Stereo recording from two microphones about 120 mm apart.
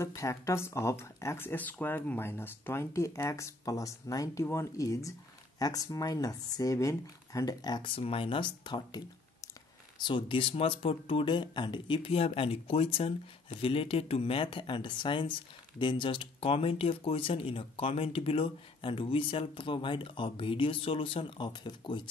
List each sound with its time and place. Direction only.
0.0 s speech: 25° left (ahead or behind); by 22.0 s 40° left (ahead or behind)